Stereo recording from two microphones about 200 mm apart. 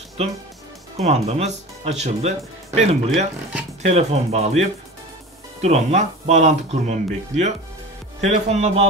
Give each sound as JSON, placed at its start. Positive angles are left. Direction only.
{"t": 0.2, "sound": "speech", "side_deg": -30}